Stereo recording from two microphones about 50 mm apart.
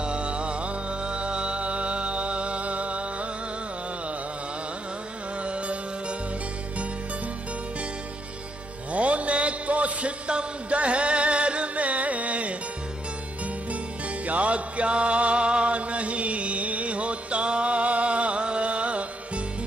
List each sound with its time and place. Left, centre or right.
0.0 s music: right
5.4 s music: right
8.9 s a sound: right
13.7 s music: right